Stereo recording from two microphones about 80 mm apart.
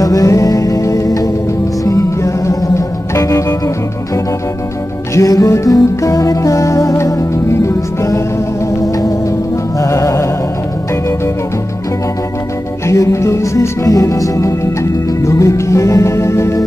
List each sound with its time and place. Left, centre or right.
0.0 s music: left
12.8 s music: left